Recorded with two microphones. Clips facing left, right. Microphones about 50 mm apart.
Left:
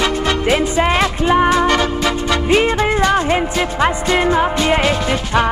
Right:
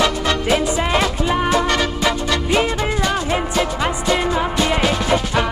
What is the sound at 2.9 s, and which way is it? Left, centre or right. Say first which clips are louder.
Music: left 5 dB; left.